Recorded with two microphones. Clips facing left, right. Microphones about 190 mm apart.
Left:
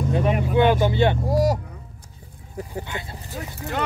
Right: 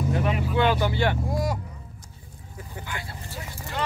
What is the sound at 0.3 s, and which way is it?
Vehicle, 50° left (ahead or behind).